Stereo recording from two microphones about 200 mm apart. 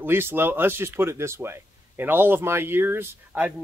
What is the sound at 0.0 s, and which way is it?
Speech, 10° right (ahead or behind).